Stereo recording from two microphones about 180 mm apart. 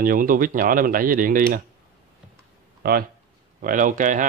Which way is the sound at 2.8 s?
55° right (ahead or behind).